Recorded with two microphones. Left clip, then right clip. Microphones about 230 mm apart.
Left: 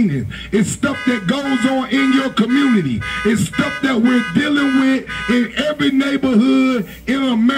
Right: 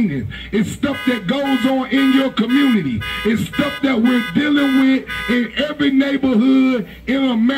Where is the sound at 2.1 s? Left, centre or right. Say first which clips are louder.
Even; left.